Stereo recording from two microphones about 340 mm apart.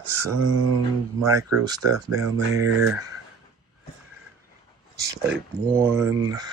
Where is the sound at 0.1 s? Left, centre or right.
Right.